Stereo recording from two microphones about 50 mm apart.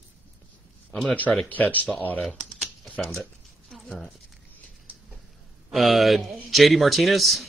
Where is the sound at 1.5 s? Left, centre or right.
Left.